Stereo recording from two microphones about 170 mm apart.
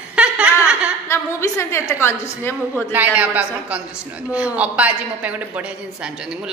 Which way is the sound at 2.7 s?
10° right (ahead or behind).